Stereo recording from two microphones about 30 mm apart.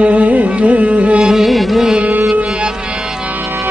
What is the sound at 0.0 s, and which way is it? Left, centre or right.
Carnatic music, right.